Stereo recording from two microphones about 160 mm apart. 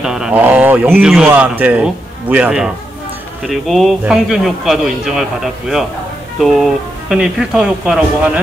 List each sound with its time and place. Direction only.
0.0 s a man's voice: 5° right (ahead or behind)